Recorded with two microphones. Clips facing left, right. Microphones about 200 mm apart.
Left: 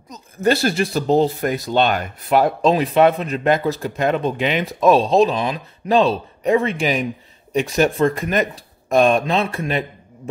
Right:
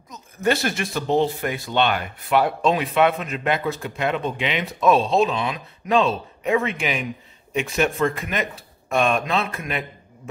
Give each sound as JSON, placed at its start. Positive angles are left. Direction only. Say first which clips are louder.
{"t": 0.1, "sound": "speech", "louder": "left 4 dB", "side_deg": 35}